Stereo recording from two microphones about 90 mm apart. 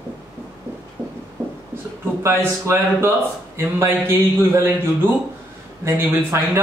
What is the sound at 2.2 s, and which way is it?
Speech, 30° right (ahead or behind).